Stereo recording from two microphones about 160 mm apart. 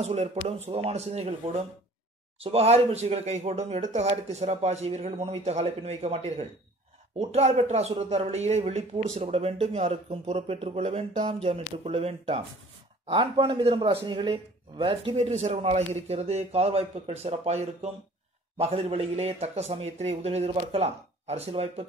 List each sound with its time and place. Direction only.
0.0 s speech: 40° right (ahead or behind)